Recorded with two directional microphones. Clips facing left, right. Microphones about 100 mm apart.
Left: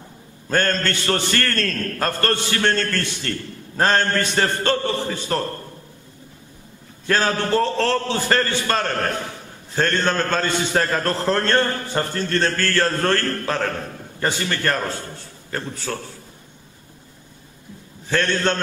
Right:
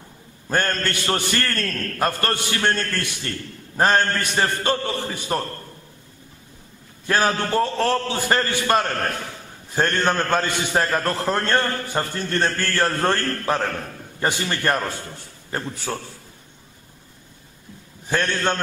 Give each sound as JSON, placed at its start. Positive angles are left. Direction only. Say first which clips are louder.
{"t": 0.5, "sound": "a man's voice", "louder": "left 2 dB", "side_deg": -15}
{"t": 7.1, "sound": "a man's voice", "louder": "left 1 dB", "side_deg": -15}
{"t": 18.0, "sound": "a man's voice", "louder": "left 2 dB", "side_deg": -15}